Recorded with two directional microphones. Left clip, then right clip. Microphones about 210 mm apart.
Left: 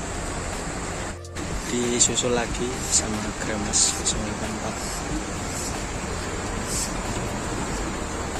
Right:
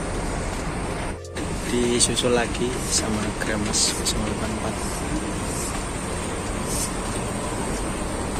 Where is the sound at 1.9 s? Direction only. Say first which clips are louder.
Right 1 dB; 10° left (ahead or behind).